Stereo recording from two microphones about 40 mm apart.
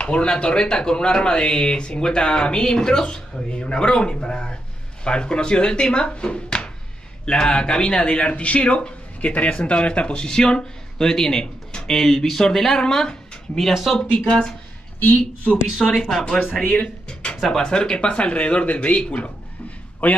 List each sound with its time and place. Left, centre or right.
0.0 s speech: left
8.3 s speech: left
15.0 s speech: left
15.8 s speech: centre
16.7 s speech: left